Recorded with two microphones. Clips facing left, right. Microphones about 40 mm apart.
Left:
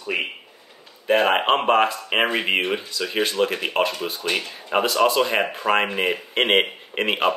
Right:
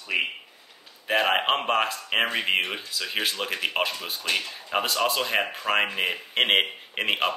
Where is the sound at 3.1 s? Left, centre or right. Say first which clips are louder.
Left 7 dB; centre.